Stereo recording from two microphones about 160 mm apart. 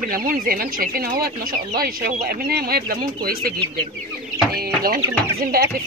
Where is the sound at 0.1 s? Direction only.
65° right (ahead or behind).